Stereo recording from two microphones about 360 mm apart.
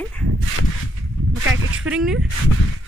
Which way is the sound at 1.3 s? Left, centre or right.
Right.